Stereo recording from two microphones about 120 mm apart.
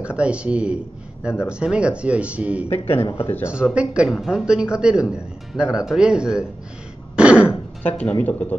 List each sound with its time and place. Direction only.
0.0 s speech: 10° right (ahead or behind)
3.2 s speech: 15° left (ahead or behind)
3.4 s speech: 10° right (ahead or behind)
7.2 s cough: 10° right (ahead or behind)
7.8 s speech: 15° left (ahead or behind)